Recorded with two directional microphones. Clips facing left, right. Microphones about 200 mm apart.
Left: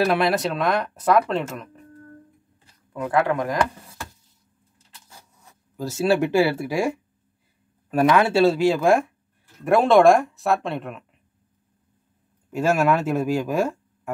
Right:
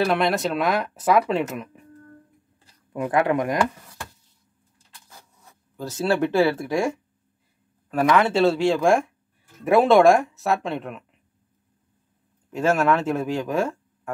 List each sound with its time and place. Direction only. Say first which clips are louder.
0.0 s speech: left 1 dB; 5° left (ahead or behind)
2.9 s speech: right 1 dB; 15° right (ahead or behind)
5.8 s speech: left 2 dB; 10° left (ahead or behind)
7.9 s speech: left 1 dB; 10° left (ahead or behind)
12.5 s speech: even; 10° left (ahead or behind)